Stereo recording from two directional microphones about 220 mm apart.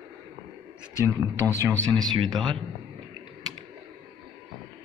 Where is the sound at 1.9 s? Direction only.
20° right (ahead or behind).